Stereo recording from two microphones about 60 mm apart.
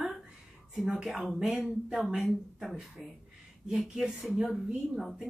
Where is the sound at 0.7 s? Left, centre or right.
Centre.